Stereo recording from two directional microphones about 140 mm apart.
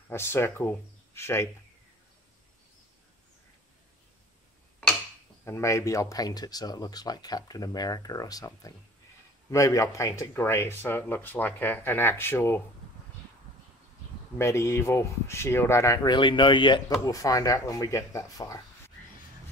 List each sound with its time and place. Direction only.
0.1 s speech: 20° left (ahead or behind)
5.4 s speech: 20° left (ahead or behind)
14.4 s speech: 20° left (ahead or behind)